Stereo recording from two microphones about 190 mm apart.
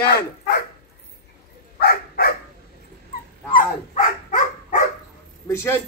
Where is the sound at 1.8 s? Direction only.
55° left (ahead or behind).